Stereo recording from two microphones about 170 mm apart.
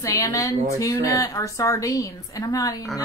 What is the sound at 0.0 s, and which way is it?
A woman's voice, 20° left (ahead or behind).